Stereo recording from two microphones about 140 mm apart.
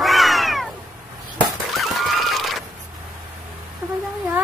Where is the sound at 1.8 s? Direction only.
Centre (ahead or behind).